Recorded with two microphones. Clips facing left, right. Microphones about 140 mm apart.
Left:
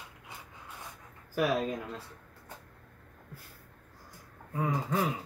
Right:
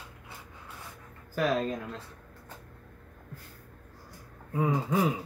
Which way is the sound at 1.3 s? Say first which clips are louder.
Right 1 dB; 15° left (ahead or behind).